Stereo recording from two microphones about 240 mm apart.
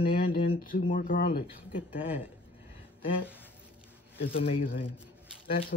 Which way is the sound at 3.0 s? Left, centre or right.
Left.